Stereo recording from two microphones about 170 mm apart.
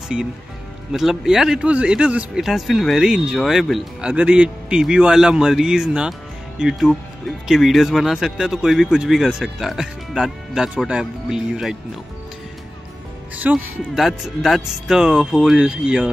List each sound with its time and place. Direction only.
0.9 s speech: centre (ahead or behind)
13.4 s speech: 5° right (ahead or behind)